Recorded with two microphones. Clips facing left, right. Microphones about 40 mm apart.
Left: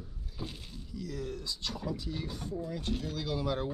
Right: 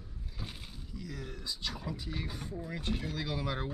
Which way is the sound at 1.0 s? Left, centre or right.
Centre.